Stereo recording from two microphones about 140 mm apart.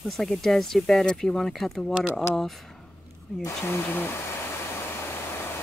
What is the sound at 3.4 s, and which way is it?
Speech, 20° left (ahead or behind).